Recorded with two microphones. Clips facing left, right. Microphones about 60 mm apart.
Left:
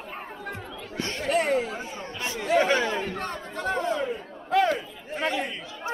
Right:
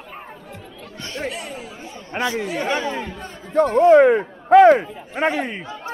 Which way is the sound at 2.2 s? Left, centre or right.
Right.